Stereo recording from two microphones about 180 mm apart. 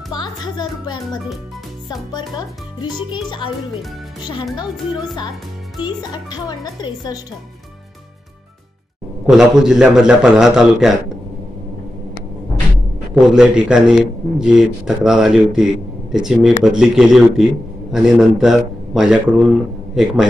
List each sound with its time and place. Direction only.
0.1 s a child's voice: 25° left (ahead or behind)
5.8 s a child's voice: 25° left (ahead or behind)
9.2 s a man's voice: 5° right (ahead or behind)
13.1 s a man's voice: 5° right (ahead or behind)